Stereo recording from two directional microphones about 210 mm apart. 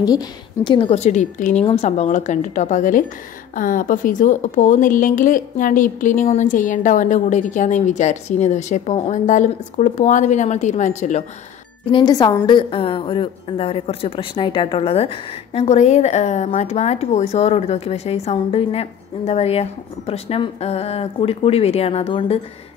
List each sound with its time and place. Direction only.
0.0 s a woman's voice: 20° left (ahead or behind)
11.9 s a woman's voice: 20° left (ahead or behind)